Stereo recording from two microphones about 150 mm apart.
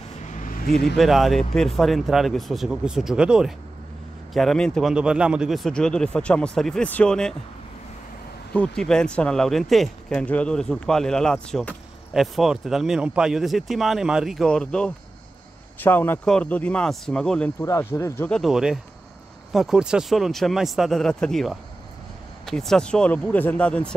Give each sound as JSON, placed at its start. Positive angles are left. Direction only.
{"t": 0.2, "sound": "vehicle", "side_deg": 55}
{"t": 0.9, "sound": "speech", "side_deg": 0}
{"t": 8.5, "sound": "speech", "side_deg": 5}
{"t": 17.6, "sound": "speech", "side_deg": 20}
{"t": 18.4, "sound": "speech", "side_deg": -5}